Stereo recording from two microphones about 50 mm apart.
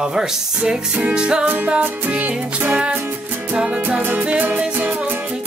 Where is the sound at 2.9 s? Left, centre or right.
Right.